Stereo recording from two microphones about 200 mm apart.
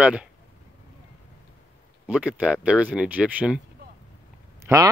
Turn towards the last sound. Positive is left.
turn(degrees=-15)  # may be behind; listen again after turning